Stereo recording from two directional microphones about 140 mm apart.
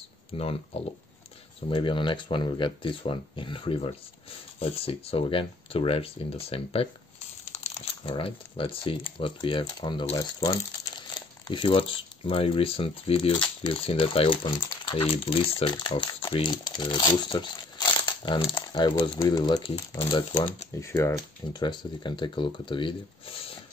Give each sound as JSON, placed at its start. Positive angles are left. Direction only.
{"t": 0.3, "sound": "speech", "side_deg": 45}
{"t": 7.5, "sound": "a sound", "side_deg": 50}
{"t": 8.0, "sound": "speech", "side_deg": 40}
{"t": 10.1, "sound": "speech", "side_deg": 25}
{"t": 20.8, "sound": "speech", "side_deg": 20}
{"t": 21.5, "sound": "speech", "side_deg": 30}